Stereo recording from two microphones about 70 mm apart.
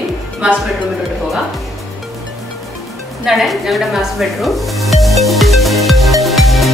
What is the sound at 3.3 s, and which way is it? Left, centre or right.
Stir, centre.